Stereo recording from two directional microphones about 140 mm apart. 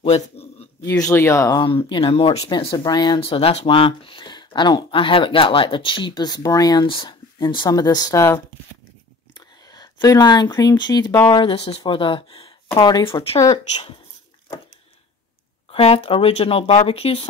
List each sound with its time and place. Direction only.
0.0 s a sound: 45° left (ahead or behind)
0.8 s speech: 20° left (ahead or behind)
1.9 s speech: 40° left (ahead or behind)
15.7 s speech: 45° left (ahead or behind)